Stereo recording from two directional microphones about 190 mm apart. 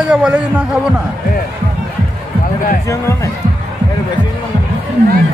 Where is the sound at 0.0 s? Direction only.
5° right (ahead or behind).